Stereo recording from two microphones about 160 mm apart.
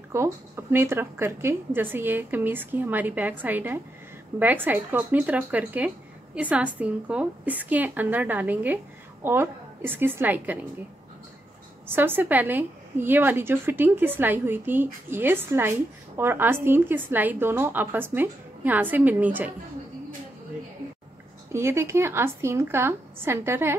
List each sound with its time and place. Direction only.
0.1 s a woman's voice: 15° right (ahead or behind)
11.9 s a woman's voice: 15° right (ahead or behind)
21.5 s a woman's voice: 15° right (ahead or behind)